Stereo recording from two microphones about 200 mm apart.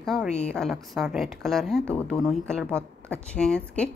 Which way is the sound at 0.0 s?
Centre (ahead or behind).